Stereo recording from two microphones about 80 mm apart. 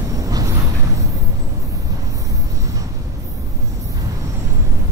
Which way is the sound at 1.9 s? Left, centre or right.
Right.